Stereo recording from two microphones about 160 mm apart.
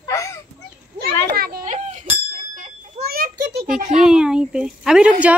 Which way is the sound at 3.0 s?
70° right (ahead or behind).